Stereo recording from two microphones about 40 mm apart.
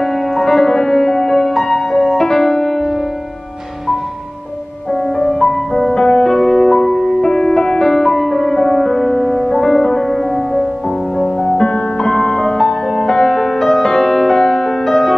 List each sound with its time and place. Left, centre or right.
0.0 s music: centre
5.2 s music: centre
11.4 s music: left; by 15.1 s centre